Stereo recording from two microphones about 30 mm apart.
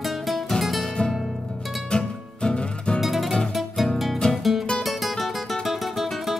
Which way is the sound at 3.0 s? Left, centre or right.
Centre.